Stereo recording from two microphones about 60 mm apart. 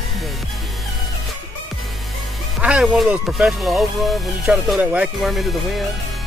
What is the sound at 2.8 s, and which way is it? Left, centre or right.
Speech, centre.